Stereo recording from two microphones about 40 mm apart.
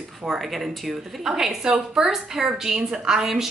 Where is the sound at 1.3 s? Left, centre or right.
Centre.